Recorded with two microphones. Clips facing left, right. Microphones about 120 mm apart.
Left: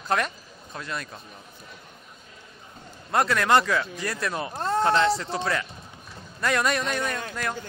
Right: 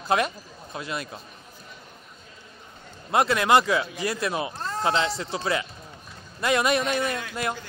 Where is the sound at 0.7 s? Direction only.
10° right (ahead or behind).